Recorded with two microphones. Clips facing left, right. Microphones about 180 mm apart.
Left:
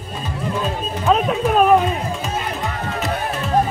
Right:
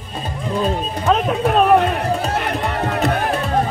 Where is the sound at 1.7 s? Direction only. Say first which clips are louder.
Right 2 dB; 65° right (ahead or behind).